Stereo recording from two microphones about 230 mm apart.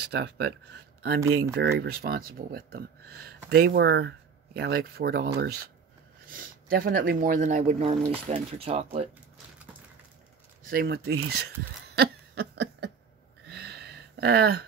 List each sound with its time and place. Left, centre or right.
0.0 s speech: right
10.7 s speech: right
11.9 s a sound: right